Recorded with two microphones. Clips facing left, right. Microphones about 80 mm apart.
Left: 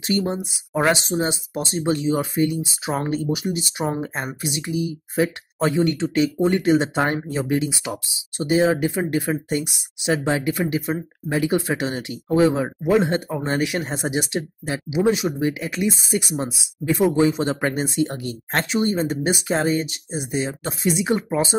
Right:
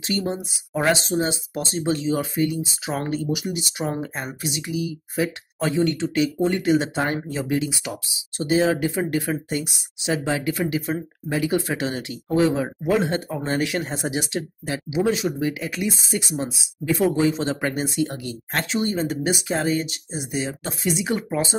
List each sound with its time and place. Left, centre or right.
0.0 s speech: left
18.1 s speech: left